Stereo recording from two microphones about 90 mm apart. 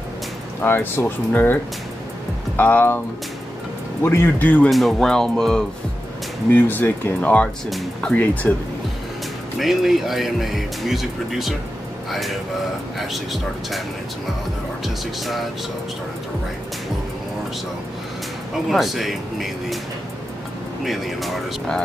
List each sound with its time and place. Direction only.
0.6 s speech: 25° left (ahead or behind)
4.0 s speech: 25° left (ahead or behind)
4.6 s speech: centre (ahead or behind)
6.5 s speech: 20° left (ahead or behind)
9.6 s speech: centre (ahead or behind)
18.7 s speech: centre (ahead or behind)
20.8 s speech: centre (ahead or behind)